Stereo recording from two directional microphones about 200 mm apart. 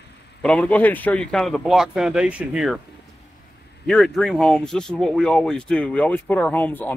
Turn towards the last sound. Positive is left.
turn(degrees=10)  # may be behind; listen again after turning